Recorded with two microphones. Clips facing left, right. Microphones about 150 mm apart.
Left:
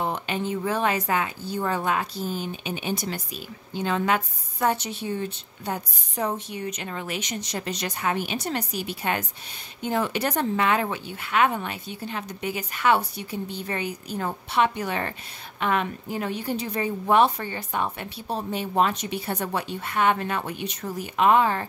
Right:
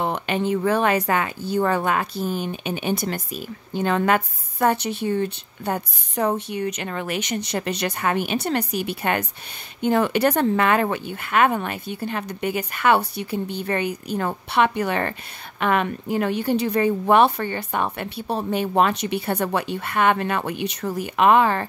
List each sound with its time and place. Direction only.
0.0 s a woman's voice: 65° right (ahead or behind)